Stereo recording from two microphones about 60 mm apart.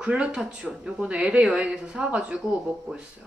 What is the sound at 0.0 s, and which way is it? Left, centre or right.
Speech, centre.